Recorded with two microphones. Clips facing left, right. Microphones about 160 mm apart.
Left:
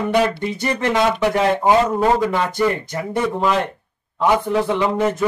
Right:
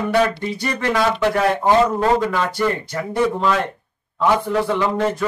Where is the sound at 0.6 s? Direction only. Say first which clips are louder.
Left 2 dB; 20° left (ahead or behind).